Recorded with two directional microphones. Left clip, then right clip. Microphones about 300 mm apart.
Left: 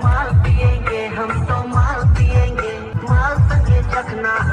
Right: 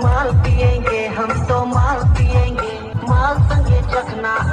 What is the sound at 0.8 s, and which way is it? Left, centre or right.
Music, right.